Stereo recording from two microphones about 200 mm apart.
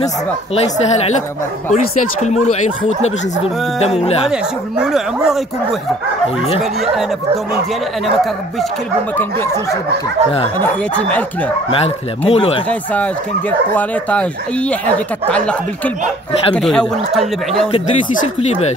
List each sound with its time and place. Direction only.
0.6 s speech: 35° left (ahead or behind)
4.3 s speech: 5° right (ahead or behind)
9.1 s speech: 10° left (ahead or behind)
10.6 s speech: 5° left (ahead or behind)
11.7 s speech: 30° left (ahead or behind)
12.6 s speech: 5° left (ahead or behind)